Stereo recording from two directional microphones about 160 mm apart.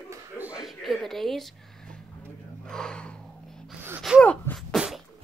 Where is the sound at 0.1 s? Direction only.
10° right (ahead or behind).